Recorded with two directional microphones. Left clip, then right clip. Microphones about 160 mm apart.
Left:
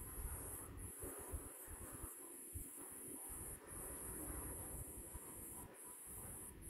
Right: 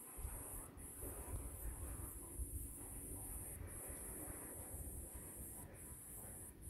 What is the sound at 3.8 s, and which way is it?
Vehicle, 55° left (ahead or behind).